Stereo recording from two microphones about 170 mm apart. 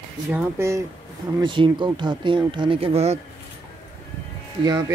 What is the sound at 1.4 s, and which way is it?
Speech, 30° right (ahead or behind).